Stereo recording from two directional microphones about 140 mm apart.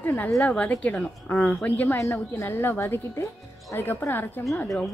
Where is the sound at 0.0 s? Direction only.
15° left (ahead or behind).